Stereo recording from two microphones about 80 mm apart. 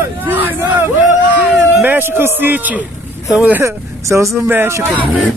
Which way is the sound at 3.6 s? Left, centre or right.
Right.